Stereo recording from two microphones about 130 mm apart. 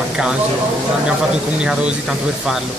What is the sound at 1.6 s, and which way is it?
Speech, 10° right (ahead or behind).